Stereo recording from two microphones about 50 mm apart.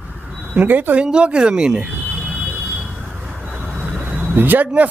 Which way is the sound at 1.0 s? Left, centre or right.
Right.